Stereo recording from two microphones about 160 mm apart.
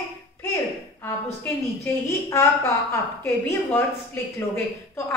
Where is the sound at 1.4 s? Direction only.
15° left (ahead or behind).